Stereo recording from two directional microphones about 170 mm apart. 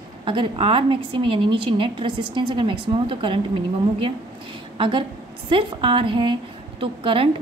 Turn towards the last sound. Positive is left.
turn(degrees=-30)  # may be behind; listen again after turning